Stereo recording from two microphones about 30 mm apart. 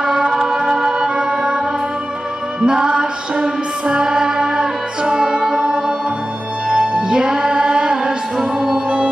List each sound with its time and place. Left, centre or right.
0.0 s a capella: centre
0.6 s music: centre
2.6 s music: right
6.7 s music: right
8.7 s music: right